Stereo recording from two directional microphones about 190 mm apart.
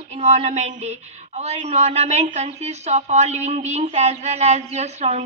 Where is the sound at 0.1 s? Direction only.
40° right (ahead or behind).